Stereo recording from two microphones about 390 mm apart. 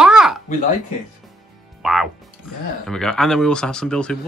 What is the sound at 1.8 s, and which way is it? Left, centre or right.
Speech, centre.